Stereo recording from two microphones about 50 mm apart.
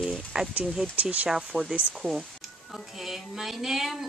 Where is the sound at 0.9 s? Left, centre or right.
Right.